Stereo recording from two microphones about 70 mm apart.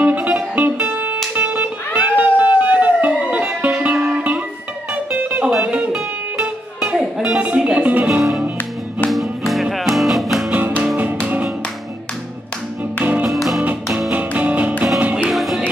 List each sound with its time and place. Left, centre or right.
0.0 s music: right
9.1 s music: centre
13.0 s music: centre
13.3 s music: centre
14.1 s music: right
15.3 s music: centre